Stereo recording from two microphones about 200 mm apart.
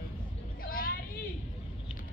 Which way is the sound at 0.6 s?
45° left (ahead or behind).